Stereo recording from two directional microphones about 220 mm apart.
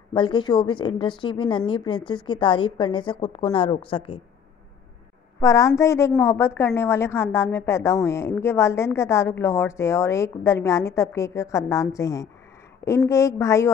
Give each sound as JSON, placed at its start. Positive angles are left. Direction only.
{"t": 0.1, "sound": "a woman's voice", "side_deg": 20}
{"t": 5.4, "sound": "a woman's voice", "side_deg": 15}